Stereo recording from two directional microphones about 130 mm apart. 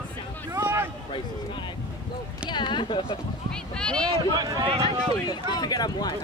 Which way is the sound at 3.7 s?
5° left (ahead or behind).